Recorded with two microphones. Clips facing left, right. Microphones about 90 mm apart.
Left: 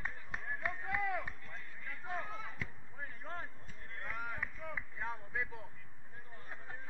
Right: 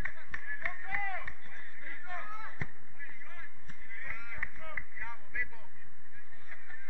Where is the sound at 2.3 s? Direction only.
15° right (ahead or behind).